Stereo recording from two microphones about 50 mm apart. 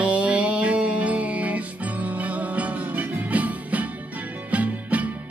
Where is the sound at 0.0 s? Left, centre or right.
Right.